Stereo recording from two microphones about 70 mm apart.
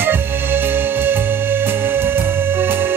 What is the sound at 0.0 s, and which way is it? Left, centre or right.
Music, right.